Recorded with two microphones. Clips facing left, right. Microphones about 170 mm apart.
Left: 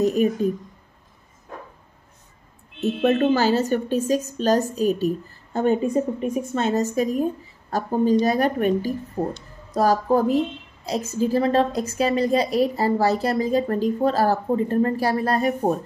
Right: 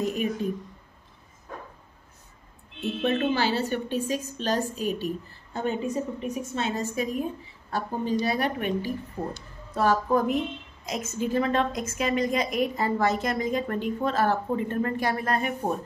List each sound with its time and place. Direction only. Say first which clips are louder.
0.0 s a woman's voice: left 8 dB; 40° left (ahead or behind)
2.8 s a woman's voice: left 6 dB; 45° left (ahead or behind)